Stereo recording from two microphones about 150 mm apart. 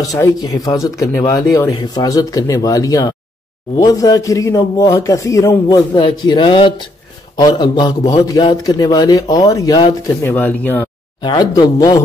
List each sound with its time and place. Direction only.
0.0 s a man's voice: 25° left (ahead or behind)
5.9 s a man's voice: 35° left (ahead or behind)
10.2 s speech: 10° left (ahead or behind)
11.2 s a man's voice: 25° left (ahead or behind)